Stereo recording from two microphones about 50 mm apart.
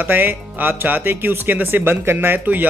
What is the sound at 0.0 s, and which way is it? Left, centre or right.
Speech, right.